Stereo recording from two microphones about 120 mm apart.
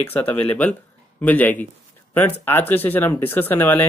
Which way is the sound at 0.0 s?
15° left (ahead or behind).